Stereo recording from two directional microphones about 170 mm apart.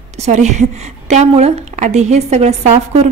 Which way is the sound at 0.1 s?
40° right (ahead or behind).